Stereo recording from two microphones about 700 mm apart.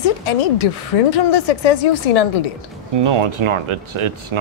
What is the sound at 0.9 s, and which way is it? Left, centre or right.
A woman's voice, left.